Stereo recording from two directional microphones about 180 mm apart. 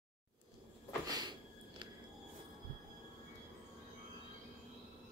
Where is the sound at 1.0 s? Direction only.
20° right (ahead or behind).